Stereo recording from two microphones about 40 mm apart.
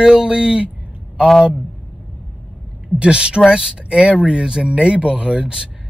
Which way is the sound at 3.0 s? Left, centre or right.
Right.